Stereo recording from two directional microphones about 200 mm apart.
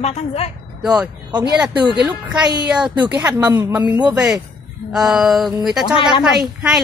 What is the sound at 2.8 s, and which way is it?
Speech, 5° right (ahead or behind).